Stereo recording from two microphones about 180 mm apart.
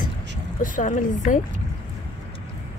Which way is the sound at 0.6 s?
45° left (ahead or behind).